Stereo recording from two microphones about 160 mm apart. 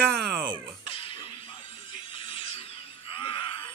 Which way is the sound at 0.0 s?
90° right.